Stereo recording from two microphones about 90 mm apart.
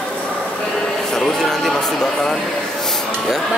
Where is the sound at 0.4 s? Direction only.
5° left (ahead or behind).